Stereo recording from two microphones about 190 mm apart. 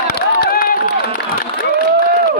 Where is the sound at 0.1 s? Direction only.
55° left (ahead or behind).